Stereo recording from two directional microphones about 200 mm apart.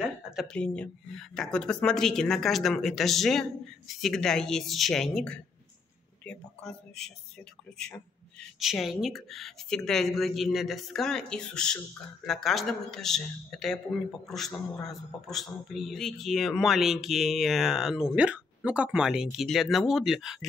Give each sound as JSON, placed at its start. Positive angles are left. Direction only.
{"t": 0.4, "sound": "speech", "side_deg": 5}
{"t": 8.4, "sound": "speech", "side_deg": 0}